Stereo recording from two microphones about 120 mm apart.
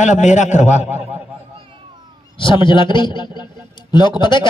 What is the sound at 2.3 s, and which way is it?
A man's voice, 45° left (ahead or behind).